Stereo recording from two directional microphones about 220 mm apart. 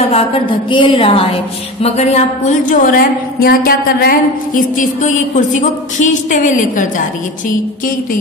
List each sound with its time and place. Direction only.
0.1 s a woman's voice: 25° left (ahead or behind)